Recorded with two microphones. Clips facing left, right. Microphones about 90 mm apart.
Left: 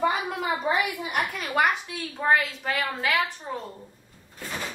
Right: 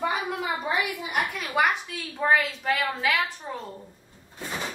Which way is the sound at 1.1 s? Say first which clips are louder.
Even; centre (ahead or behind).